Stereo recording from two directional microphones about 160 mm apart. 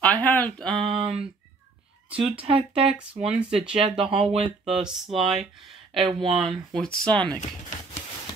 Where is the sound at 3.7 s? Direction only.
35° right (ahead or behind).